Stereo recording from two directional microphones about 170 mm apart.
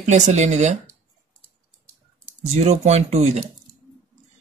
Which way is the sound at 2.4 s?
40° right (ahead or behind).